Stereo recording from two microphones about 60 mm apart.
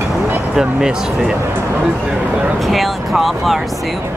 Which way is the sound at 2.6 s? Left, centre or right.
Centre.